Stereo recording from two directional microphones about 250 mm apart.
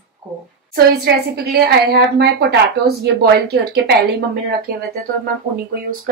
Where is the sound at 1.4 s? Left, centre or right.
Right.